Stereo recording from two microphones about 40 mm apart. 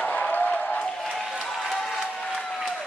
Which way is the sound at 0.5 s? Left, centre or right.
Left.